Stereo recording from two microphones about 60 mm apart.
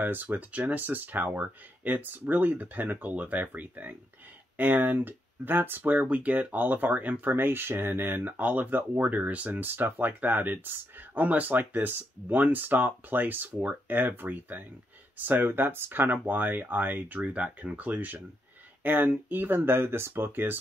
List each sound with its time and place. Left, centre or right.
0.0 s speech: right